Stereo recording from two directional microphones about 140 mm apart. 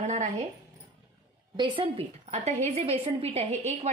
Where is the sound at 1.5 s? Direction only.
35° right (ahead or behind).